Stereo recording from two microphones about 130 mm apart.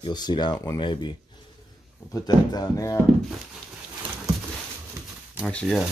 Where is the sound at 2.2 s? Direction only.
25° left (ahead or behind).